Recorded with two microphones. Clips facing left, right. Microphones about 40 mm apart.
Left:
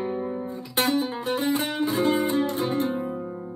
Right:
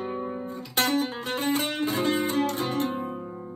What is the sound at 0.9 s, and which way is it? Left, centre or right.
Music, right.